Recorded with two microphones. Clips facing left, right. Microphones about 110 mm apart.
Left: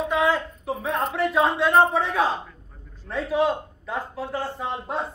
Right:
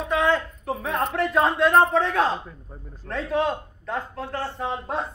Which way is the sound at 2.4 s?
40° right (ahead or behind).